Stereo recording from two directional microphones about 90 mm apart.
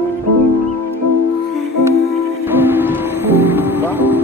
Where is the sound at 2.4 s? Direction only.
25° right (ahead or behind).